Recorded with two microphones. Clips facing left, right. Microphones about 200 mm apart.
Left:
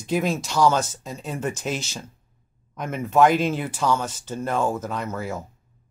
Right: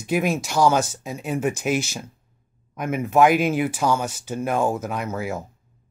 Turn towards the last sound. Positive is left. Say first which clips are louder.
# right 2 dB
turn(degrees=-10)  # may be behind; listen again after turning